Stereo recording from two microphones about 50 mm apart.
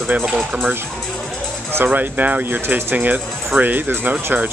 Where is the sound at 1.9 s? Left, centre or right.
Right.